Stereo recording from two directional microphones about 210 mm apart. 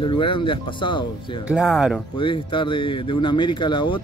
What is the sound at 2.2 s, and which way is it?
Speech, 25° left (ahead or behind).